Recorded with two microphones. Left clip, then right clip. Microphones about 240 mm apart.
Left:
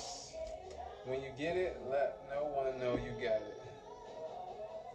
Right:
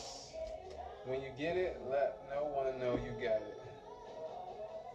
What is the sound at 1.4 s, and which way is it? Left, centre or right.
Speech, centre.